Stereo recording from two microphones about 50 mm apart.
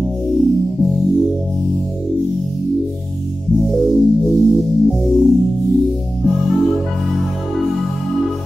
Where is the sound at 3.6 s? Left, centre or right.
Centre.